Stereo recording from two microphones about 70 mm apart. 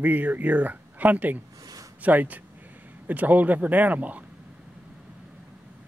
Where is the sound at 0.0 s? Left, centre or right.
Right.